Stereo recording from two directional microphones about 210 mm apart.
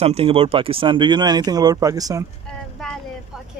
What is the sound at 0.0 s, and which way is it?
Speech, 25° right (ahead or behind).